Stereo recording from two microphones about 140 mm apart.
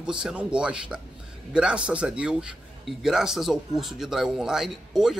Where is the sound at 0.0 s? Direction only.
5° right (ahead or behind).